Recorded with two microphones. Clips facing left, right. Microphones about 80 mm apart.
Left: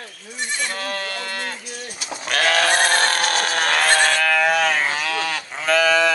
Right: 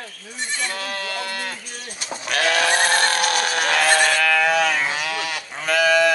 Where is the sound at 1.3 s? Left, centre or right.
Left.